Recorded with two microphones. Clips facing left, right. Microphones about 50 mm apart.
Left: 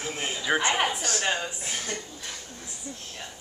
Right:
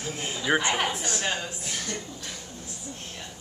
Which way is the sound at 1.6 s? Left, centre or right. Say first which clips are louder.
Even; left.